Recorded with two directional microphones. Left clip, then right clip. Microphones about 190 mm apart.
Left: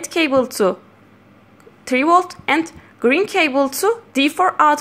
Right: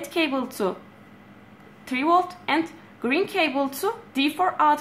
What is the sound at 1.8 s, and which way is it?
A woman's voice, 35° left (ahead or behind).